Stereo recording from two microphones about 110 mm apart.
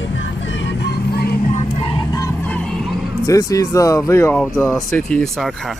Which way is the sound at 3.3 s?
30° left (ahead or behind).